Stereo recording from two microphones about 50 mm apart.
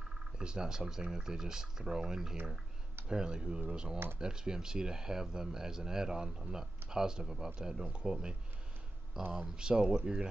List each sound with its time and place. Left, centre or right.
0.4 s speech: centre